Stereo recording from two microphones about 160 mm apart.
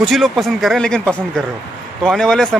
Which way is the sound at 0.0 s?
Centre (ahead or behind).